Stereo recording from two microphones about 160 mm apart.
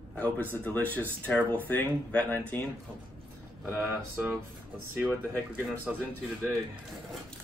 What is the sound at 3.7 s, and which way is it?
Speech, 10° right (ahead or behind).